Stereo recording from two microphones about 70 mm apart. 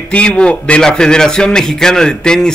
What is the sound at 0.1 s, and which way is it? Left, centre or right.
Speech, centre.